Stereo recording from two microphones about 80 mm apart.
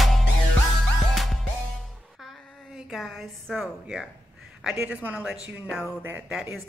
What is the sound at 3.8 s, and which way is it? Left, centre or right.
Speech, centre.